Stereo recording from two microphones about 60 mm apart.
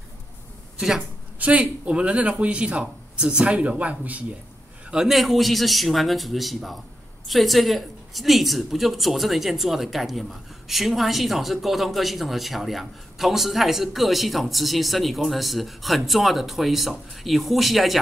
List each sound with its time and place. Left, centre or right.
0.7 s speech: centre
1.4 s speech: right
4.9 s a woman's voice: centre